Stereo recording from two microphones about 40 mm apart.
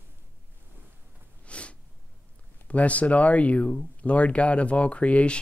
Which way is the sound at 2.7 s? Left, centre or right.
Left.